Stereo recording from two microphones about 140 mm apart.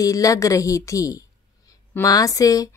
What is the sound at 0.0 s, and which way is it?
A woman's voice, 25° left (ahead or behind).